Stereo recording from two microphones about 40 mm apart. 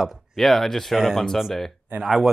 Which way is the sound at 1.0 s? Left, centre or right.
Centre.